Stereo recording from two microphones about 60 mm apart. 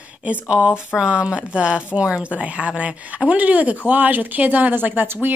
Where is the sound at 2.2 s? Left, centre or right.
Centre.